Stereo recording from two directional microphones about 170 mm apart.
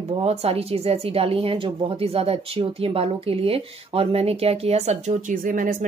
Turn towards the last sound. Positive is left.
turn(degrees=-50)  # may be behind; listen again after turning